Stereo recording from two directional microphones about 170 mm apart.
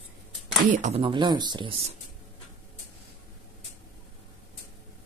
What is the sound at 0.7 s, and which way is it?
Speech, 40° right (ahead or behind).